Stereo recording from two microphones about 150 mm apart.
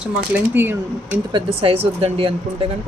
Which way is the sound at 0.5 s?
15° right (ahead or behind).